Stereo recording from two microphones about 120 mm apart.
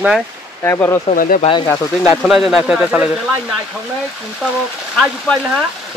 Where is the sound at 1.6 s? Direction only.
5° left (ahead or behind).